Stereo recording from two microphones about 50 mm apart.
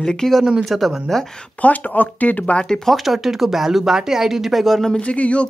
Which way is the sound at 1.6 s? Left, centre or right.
Left.